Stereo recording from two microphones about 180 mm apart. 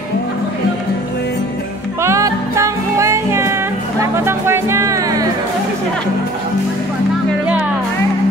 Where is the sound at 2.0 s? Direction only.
15° right (ahead or behind).